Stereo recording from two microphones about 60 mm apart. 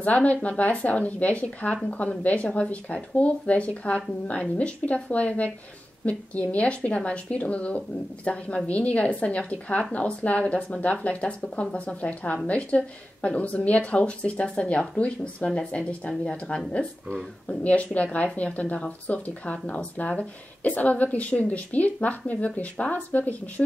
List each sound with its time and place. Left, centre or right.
0.0 s speech: left